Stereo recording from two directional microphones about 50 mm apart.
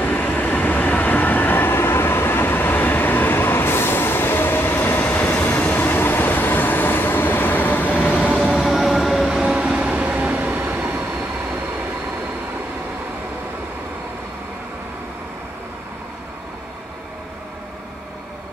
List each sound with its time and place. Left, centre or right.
0.0 s train: left
5.3 s train: left
5.9 s vehicle: left
8.5 s train: centre
9.8 s a sound: right
10.7 s train: right